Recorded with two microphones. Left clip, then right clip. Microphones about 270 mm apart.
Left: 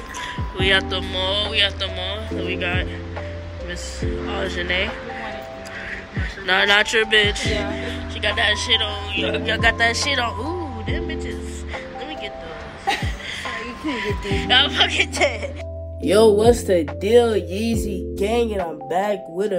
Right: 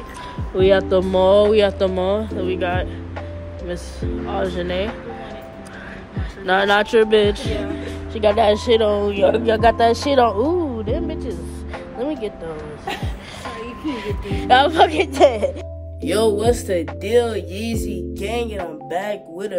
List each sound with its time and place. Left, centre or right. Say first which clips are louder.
0.6 s speech: right 4 dB; centre
6.4 s speech: even; centre
12.0 s music: right 10 dB; centre
13.5 s speech: right 2 dB; centre